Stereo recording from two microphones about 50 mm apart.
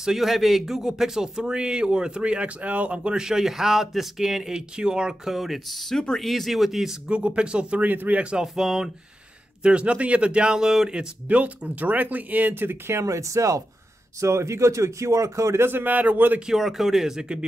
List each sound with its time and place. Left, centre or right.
0.0 s speech: centre
4.6 s speech: centre
7.1 s speech: right
7.8 s speech: right
8.2 s speech: centre
9.6 s speech: right
11.2 s speech: right
12.5 s speech: right
13.1 s speech: right
14.2 s speech: right
15.6 s speech: right
16.3 s speech: centre